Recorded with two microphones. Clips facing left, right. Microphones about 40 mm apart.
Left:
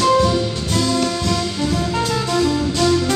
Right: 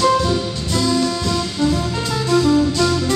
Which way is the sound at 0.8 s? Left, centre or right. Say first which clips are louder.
Right 1 dB; left.